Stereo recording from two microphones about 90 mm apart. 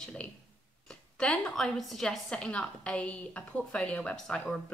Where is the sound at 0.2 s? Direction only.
15° left (ahead or behind).